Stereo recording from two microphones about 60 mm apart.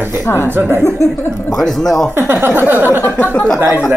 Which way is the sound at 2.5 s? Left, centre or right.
Right.